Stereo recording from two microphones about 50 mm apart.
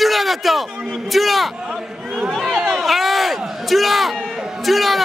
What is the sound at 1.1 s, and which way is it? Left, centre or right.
Speech, centre.